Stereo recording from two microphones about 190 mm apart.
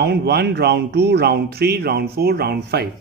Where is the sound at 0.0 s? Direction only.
60° right (ahead or behind).